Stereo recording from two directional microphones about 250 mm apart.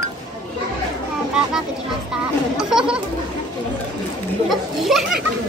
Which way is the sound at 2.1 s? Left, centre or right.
Centre.